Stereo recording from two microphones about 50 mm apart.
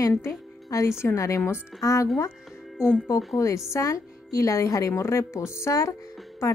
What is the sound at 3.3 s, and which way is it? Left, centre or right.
A woman's voice, left.